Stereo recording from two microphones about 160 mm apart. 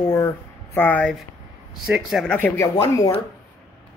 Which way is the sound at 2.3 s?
15° left (ahead or behind).